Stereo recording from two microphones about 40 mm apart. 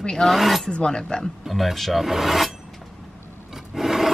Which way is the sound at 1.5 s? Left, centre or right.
Centre.